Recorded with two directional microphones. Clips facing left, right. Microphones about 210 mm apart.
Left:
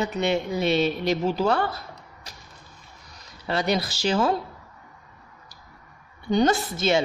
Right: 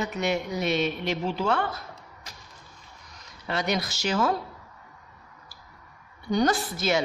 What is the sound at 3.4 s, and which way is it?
Speech, 30° left (ahead or behind).